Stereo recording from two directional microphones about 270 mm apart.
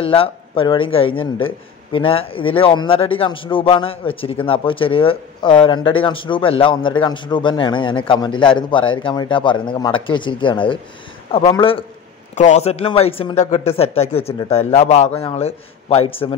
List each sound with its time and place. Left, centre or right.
0.0 s a man's voice: centre